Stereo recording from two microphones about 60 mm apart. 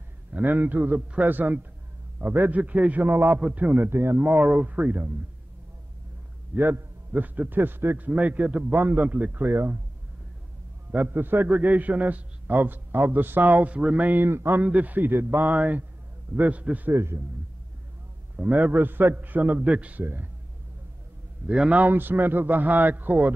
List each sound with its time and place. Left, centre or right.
0.3 s a man's voice: right
4.2 s a man's voice: right
6.5 s a man's voice: right
8.1 s a man's voice: right
9.5 s a man's voice: right
10.9 s a man's voice: right
14.0 s a man's voice: right
14.6 s a man's voice: right
16.9 s a man's voice: right
18.3 s a man's voice: right
18.7 s a man's voice: right
21.5 s a man's voice: centre
21.8 s a man's voice: right